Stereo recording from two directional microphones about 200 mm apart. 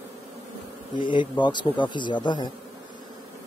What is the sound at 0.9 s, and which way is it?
Speech, 25° left (ahead or behind).